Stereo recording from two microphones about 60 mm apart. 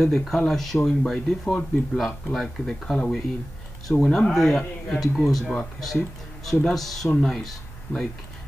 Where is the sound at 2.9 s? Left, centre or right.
Centre.